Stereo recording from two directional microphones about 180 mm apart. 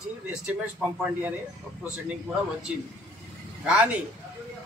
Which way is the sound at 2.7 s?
5° right (ahead or behind).